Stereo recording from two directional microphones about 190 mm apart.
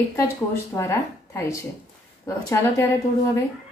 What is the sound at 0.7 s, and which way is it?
Speech, 15° left (ahead or behind).